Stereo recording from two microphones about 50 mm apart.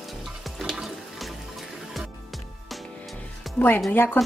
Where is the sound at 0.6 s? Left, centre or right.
Centre.